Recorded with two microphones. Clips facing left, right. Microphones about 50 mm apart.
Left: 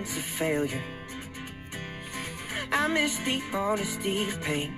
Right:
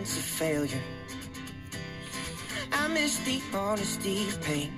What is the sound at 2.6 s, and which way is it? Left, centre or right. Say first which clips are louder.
Music: left 3 dB; left.